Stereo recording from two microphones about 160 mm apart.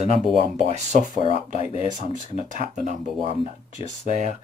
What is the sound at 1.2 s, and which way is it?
Speech, 40° left (ahead or behind).